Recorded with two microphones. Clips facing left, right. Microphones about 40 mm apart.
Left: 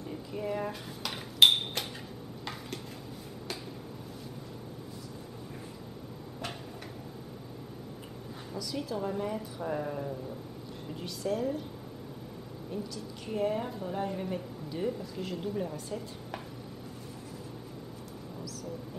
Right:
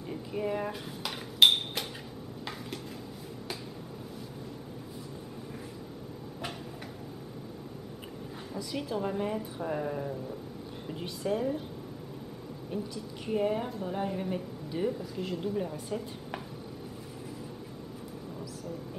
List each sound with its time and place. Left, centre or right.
0.3 s dishes: centre
1.4 s tick-tock: centre
8.5 s a woman's voice: right
9.6 s a woman's voice: centre
11.0 s a woman's voice: right
12.7 s a woman's voice: centre